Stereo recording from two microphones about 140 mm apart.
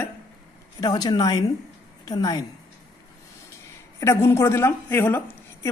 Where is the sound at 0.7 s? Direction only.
30° left (ahead or behind).